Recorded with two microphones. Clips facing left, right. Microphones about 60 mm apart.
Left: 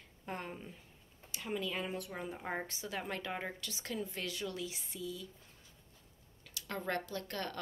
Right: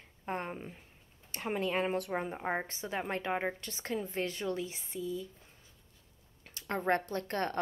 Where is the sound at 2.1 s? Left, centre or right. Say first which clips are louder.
Right 6 dB; right.